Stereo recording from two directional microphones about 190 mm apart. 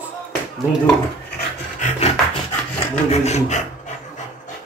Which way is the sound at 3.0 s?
35° left (ahead or behind).